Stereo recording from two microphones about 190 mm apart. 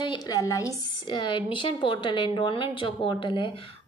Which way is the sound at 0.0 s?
20° left (ahead or behind).